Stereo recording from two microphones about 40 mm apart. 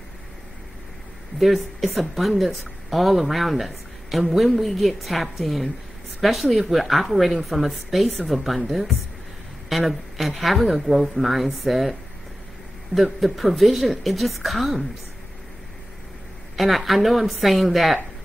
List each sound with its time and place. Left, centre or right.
1.4 s speech: centre
9.7 s speech: centre
16.5 s speech: centre